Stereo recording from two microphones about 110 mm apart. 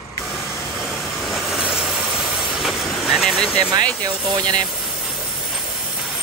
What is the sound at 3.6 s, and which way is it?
Speech, 40° right (ahead or behind).